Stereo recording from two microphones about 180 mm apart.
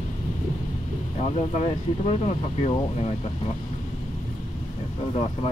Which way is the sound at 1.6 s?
35° left (ahead or behind).